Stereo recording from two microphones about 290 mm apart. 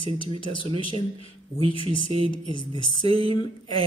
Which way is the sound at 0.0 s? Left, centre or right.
Centre.